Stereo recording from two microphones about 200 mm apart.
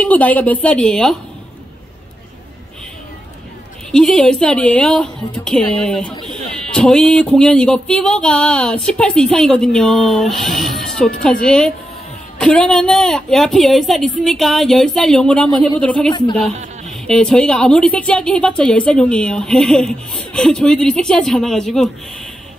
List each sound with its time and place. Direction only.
0.0 s a woman's voice: 5° left (ahead or behind)
3.9 s speech: 5° left (ahead or behind)
16.1 s a woman's voice: 25° left (ahead or behind)
16.9 s speech: 5° left (ahead or behind)